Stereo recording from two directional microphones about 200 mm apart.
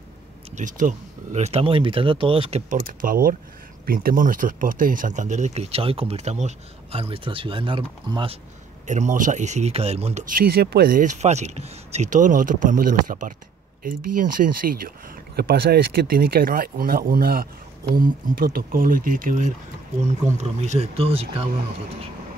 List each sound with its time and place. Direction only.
0.6 s speech: 40° right (ahead or behind)
2.7 s speech: 40° right (ahead or behind); by 8.4 s 25° right (ahead or behind)
8.8 s speech: 35° right (ahead or behind)